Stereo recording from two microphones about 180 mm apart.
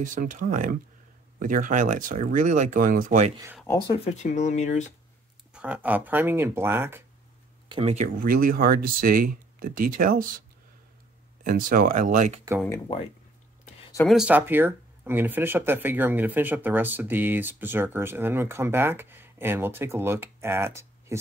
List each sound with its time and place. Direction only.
0.0 s speech: 45° right (ahead or behind)
3.7 s speech: 25° left (ahead or behind)
4.0 s speech: 40° left (ahead or behind)
5.5 s speech: 5° right (ahead or behind)
7.6 s speech: 25° right (ahead or behind)
7.9 s speech: 45° right (ahead or behind)
11.4 s speech: 50° right (ahead or behind)
14.0 s speech: 5° right (ahead or behind)